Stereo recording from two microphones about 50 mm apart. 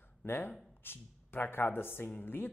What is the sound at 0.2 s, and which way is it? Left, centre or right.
Speech, left.